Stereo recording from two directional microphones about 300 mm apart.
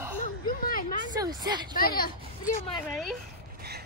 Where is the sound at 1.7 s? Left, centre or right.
Left.